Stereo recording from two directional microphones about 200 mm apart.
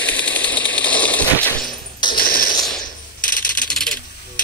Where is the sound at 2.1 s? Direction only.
45° left (ahead or behind).